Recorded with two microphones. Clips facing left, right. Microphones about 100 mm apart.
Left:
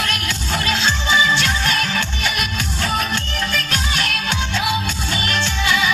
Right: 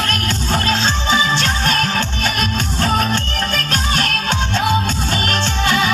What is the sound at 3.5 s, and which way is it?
Music, 45° right (ahead or behind).